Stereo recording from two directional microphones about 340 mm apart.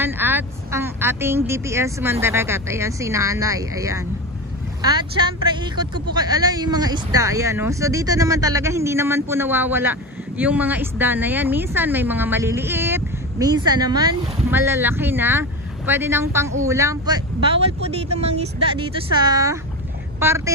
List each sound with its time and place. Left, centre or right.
0.0 s speech: centre